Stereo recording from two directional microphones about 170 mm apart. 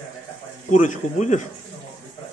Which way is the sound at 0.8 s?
45° left (ahead or behind).